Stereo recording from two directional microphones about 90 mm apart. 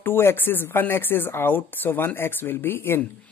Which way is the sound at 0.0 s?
25° left (ahead or behind).